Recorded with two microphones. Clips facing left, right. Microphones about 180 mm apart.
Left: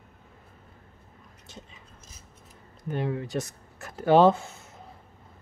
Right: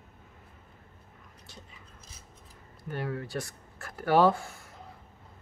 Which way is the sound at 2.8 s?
20° left (ahead or behind).